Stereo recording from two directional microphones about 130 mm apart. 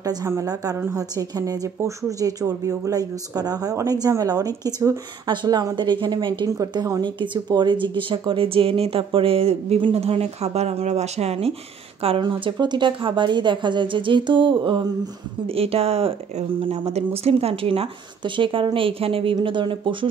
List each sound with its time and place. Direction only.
0.0 s a woman's voice: 25° right (ahead or behind); by 11.5 s 50° right (ahead or behind)
12.2 s a woman's voice: 35° right (ahead or behind)